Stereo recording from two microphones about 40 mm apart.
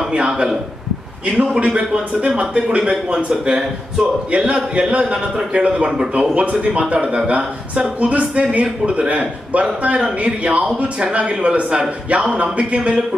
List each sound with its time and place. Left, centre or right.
0.3 s speech: centre
1.2 s a man's voice: right